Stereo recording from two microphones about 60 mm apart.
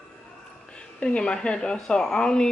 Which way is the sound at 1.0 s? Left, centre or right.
Centre.